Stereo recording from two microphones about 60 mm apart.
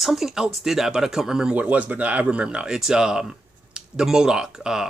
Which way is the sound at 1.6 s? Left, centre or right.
Right.